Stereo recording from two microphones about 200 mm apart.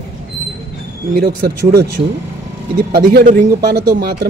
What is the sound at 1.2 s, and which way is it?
Speech, 50° right (ahead or behind).